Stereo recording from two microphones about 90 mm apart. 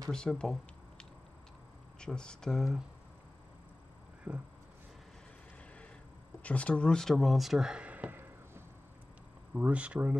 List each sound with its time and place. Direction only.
0.1 s speech: 10° left (ahead or behind)
4.3 s speech: 15° right (ahead or behind)
6.4 s speech: 15° left (ahead or behind); by 10.1 s 15° right (ahead or behind)